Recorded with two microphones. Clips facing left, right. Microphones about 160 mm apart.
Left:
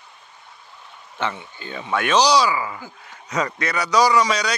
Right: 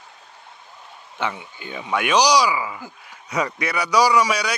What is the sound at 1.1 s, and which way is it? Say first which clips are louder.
Speech: even; 10° right (ahead or behind).